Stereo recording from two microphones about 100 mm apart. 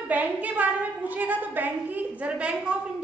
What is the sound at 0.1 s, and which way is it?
A woman's voice, 15° right (ahead or behind).